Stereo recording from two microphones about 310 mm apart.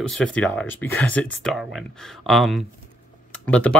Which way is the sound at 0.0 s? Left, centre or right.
Centre.